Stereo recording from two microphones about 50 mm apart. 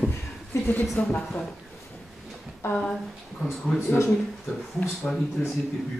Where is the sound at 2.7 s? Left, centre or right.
Left.